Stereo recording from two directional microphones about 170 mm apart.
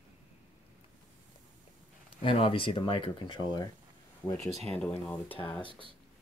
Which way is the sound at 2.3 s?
30° left (ahead or behind).